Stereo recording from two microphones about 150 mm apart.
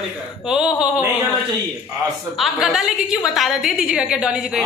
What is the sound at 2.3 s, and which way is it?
A woman's voice, centre (ahead or behind).